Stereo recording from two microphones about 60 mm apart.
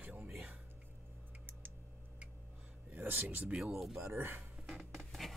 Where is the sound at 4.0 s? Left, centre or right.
Right.